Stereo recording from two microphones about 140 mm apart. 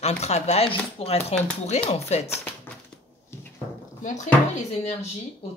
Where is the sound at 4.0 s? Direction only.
60° left (ahead or behind).